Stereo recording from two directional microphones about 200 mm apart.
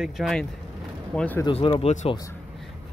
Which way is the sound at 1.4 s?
25° left (ahead or behind).